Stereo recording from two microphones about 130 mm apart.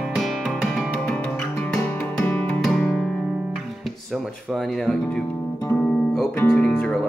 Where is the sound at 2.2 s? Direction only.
15° left (ahead or behind).